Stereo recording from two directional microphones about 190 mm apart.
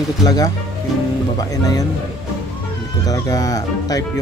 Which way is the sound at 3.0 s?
20° left (ahead or behind).